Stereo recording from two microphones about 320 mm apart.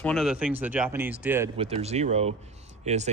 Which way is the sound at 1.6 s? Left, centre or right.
Centre.